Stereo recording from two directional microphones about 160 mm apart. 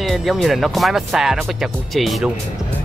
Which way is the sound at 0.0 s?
Centre (ahead or behind).